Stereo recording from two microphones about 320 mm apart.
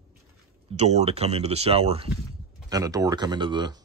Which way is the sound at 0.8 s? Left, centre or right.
Centre.